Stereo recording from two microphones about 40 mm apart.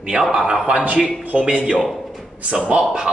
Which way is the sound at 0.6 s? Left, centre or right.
Right.